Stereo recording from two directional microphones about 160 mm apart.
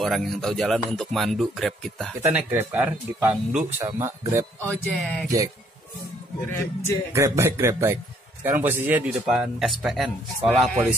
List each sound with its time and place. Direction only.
0.0 s a man's voice: centre (ahead or behind)
2.3 s speech: 10° right (ahead or behind)
4.6 s speech: 10° left (ahead or behind)
6.5 s speech: 15° left (ahead or behind)
7.1 s a man's voice: 20° right (ahead or behind); by 11.0 s centre (ahead or behind)